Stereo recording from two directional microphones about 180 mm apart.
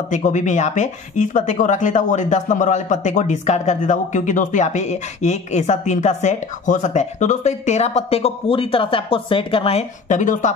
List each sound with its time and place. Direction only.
0.1 s speech: 40° left (ahead or behind)